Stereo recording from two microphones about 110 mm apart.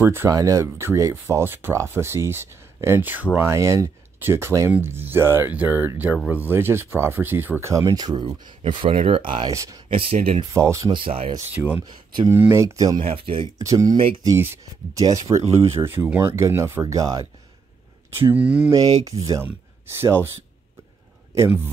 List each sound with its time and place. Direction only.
0.0 s speech: 20° right (ahead or behind)
7.7 s speech: 35° right (ahead or behind)
9.5 s a sound: 30° right (ahead or behind)
9.9 s speech: 60° right (ahead or behind)
10.5 s speech: 25° right (ahead or behind)
10.9 s speech: 55° right (ahead or behind)
11.5 s speech: 15° right (ahead or behind)
11.8 s speech: 45° right (ahead or behind)
12.3 s speech: 25° right (ahead or behind)
13.0 s speech: 55° right (ahead or behind)
13.6 s speech: 30° right (ahead or behind)
18.2 s speech: 10° right (ahead or behind)
18.7 s a sound: 30° right (ahead or behind)
20.0 s speech: 20° right (ahead or behind)